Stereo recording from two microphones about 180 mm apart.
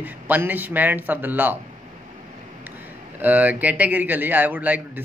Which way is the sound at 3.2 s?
10° right (ahead or behind).